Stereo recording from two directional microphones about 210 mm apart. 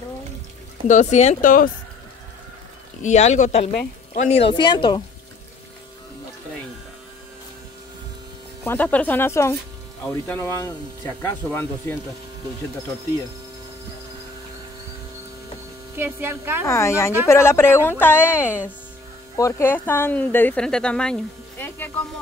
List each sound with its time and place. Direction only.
0.8 s speech: 35° left (ahead or behind)
3.0 s speech: 35° left (ahead or behind)
8.6 s speech: 5° left (ahead or behind)
16.0 s speech: 10° right (ahead or behind)
16.6 s speech: 15° left (ahead or behind)